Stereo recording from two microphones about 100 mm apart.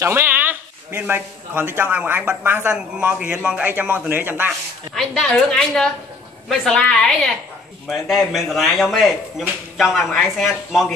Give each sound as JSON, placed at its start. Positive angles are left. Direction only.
{"t": 0.0, "sound": "a man's voice", "side_deg": -25}
{"t": 4.5, "sound": "a woman's voice", "side_deg": 5}